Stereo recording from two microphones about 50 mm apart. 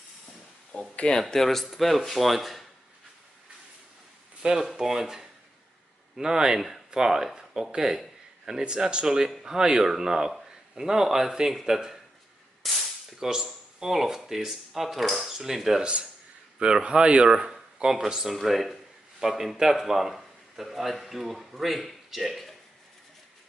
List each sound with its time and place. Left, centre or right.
0.7 s speech: left
1.2 s speech: centre
4.4 s speech: centre
12.6 s a sound: centre
13.3 s speech: centre
15.8 s a man's voice: centre